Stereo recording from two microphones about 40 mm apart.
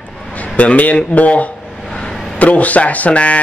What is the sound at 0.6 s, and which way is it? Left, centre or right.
Speech, left.